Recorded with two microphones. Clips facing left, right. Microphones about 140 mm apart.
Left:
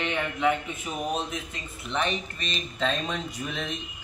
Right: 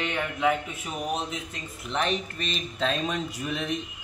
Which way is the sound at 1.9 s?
Centre (ahead or behind).